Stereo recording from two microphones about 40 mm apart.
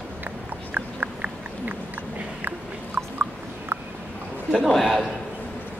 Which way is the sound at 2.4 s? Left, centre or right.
Right.